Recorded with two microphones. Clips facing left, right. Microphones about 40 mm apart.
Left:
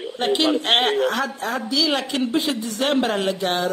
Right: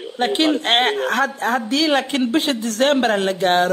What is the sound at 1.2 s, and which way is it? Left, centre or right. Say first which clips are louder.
A woman's voice: right 5 dB; right.